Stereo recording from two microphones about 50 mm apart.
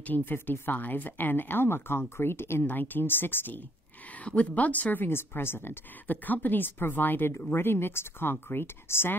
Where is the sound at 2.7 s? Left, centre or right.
Left.